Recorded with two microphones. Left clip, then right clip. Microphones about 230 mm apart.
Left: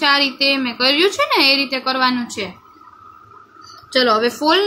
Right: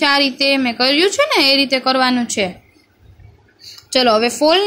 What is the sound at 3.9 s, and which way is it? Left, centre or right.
Speech, right.